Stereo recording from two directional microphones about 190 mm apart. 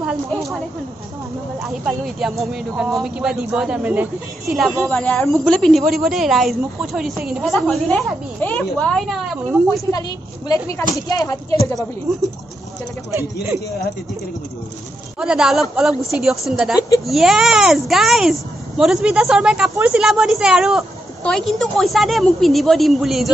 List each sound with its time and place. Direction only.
0.0 s speech: centre (ahead or behind)
1.6 s speech: centre (ahead or behind)
9.8 s speech: 20° left (ahead or behind)
15.1 s speech: 5° right (ahead or behind)